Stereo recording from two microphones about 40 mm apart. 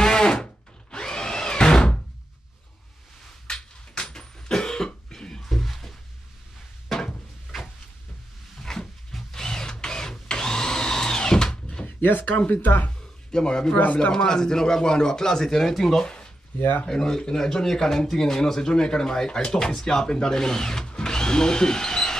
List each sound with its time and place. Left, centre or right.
0.0 s a sound: centre
3.4 s cough: left; by 5.9 s centre
8.6 s printer: centre
12.0 s speech: left
13.3 s speech: centre
16.0 s speech: left
16.5 s speech: left
16.8 s speech: centre